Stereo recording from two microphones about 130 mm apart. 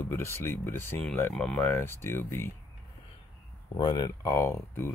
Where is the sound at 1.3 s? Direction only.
5° left (ahead or behind).